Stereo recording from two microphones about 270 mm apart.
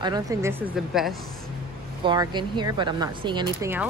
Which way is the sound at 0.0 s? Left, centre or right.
Centre.